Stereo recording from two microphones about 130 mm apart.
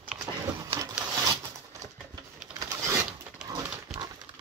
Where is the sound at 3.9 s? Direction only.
5° right (ahead or behind).